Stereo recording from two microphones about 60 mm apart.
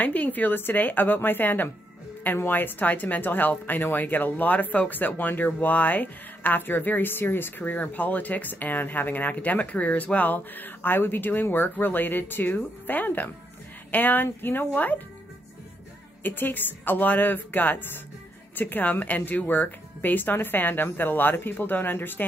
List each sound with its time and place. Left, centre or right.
0.0 s speech: left
16.2 s speech: left